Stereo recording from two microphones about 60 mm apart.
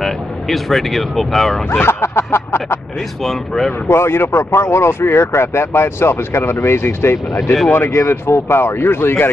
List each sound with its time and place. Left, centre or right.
0.0 s speech: centre
1.7 s speech: left
3.3 s speech: centre
3.9 s speech: left